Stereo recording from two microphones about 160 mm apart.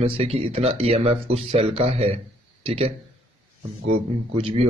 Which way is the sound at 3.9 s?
35° right (ahead or behind).